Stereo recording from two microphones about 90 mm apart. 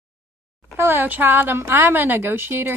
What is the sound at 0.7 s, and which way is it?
A woman's voice, 20° right (ahead or behind).